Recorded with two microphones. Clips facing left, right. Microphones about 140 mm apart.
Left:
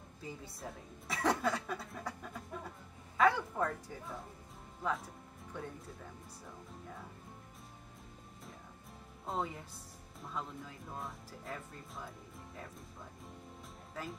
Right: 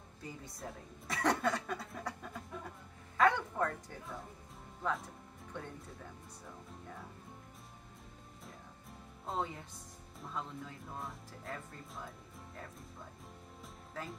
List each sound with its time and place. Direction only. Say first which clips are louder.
0.2 s a woman's voice: even; centre (ahead or behind)
9.2 s a woman's voice: even; centre (ahead or behind)